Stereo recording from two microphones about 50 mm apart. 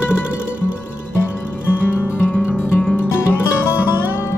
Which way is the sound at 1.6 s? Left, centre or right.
Left.